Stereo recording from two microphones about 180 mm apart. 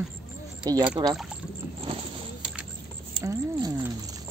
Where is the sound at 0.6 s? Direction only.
25° right (ahead or behind).